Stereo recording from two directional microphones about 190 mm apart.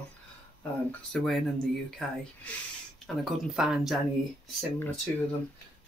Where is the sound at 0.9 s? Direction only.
Centre (ahead or behind).